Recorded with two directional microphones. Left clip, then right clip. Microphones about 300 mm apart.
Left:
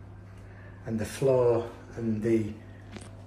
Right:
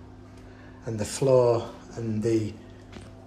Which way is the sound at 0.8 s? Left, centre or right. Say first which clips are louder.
Right 3 dB; centre.